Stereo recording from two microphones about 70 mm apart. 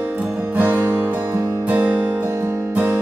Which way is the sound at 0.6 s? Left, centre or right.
Right.